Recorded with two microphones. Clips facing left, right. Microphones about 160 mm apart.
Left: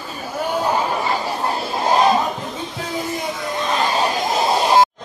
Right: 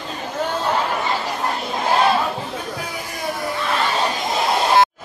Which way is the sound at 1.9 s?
15° left (ahead or behind).